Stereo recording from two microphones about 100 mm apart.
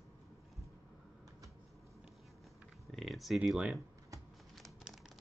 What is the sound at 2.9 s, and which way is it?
Speech, centre (ahead or behind).